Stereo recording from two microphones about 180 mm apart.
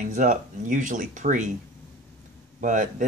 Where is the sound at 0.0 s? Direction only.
45° right (ahead or behind).